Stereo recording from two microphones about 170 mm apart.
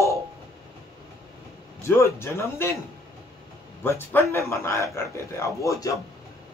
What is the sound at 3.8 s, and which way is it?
Speech, 15° left (ahead or behind).